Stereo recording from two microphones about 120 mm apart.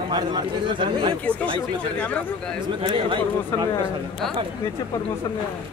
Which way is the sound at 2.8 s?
45° right (ahead or behind).